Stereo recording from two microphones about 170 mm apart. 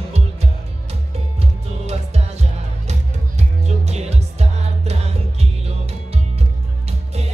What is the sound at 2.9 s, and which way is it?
Music, 40° right (ahead or behind).